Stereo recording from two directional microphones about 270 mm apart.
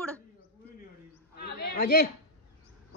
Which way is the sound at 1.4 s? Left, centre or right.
Left.